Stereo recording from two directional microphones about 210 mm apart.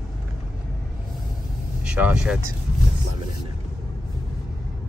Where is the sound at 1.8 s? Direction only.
5° right (ahead or behind).